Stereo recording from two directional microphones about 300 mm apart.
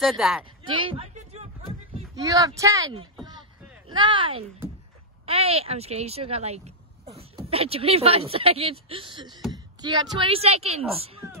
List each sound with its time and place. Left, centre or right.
0.0 s speech: centre
0.7 s a sound: centre
2.0 s a woman's voice: centre